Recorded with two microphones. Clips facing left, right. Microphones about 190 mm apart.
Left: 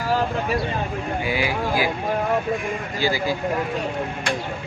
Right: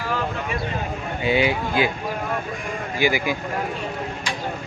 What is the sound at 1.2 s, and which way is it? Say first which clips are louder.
Speech: right 6 dB; 25° right (ahead or behind).